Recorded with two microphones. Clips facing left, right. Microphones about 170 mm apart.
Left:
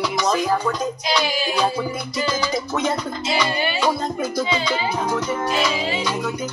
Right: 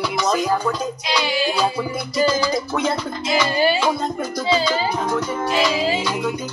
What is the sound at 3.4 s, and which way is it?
Music, 35° right (ahead or behind).